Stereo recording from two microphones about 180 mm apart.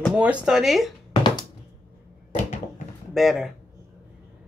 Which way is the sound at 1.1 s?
25° left (ahead or behind).